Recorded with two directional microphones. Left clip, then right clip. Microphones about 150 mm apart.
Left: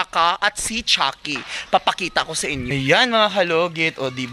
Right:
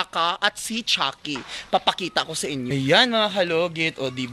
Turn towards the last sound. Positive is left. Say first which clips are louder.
# left 3 dB
turn(degrees=30)  # may be behind; listen again after turning